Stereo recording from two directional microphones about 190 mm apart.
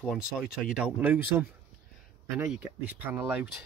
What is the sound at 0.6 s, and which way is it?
Speech, 5° right (ahead or behind).